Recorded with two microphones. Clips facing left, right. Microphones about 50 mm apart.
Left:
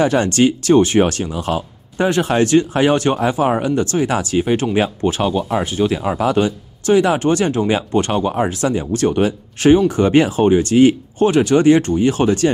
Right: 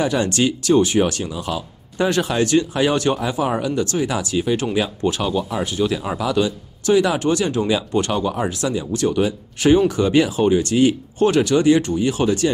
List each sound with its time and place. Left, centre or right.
0.0 s speech: left
0.4 s speech: left
2.0 s speech: left
11.2 s speech: left
11.5 s speech: left